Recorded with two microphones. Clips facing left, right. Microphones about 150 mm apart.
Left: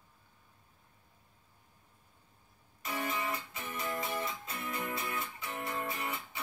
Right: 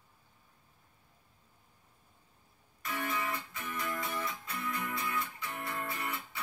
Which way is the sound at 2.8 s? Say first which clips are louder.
Even; 20° left (ahead or behind).